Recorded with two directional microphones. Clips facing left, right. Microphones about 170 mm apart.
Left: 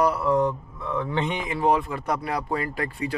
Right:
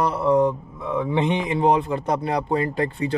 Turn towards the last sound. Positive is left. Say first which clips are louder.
# right 5 dB
turn(degrees=-25)  # may be behind; listen again after turning